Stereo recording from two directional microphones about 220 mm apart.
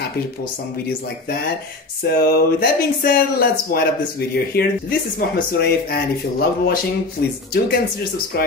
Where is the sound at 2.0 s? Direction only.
45° left (ahead or behind).